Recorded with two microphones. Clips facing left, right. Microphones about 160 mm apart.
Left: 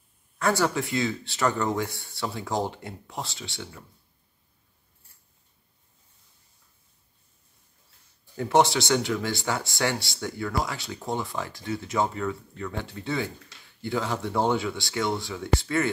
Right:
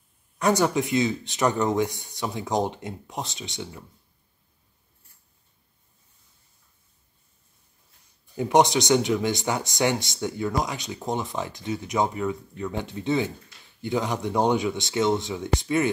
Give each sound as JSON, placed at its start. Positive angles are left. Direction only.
{"t": 0.4, "sound": "speech", "side_deg": -20}
{"t": 8.4, "sound": "speech", "side_deg": -15}